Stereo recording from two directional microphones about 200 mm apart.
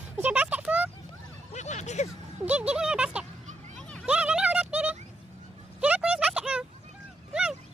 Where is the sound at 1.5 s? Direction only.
35° left (ahead or behind).